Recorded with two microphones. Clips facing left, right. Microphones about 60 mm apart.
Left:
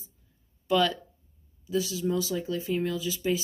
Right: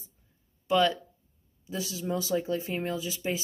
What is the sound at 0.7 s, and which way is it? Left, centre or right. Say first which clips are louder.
Speech: even; centre.